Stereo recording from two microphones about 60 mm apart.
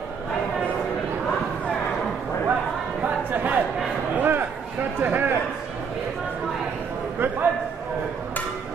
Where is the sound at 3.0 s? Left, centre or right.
Right.